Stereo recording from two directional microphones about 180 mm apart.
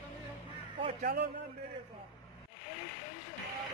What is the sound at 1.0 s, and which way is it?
Speech, 55° right (ahead or behind).